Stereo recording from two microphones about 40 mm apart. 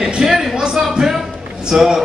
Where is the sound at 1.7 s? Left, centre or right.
Centre.